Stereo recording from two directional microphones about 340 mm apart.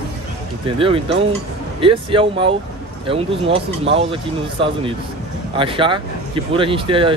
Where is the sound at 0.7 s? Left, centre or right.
Centre.